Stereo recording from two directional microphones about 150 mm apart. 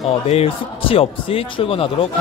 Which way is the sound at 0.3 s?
40° left (ahead or behind).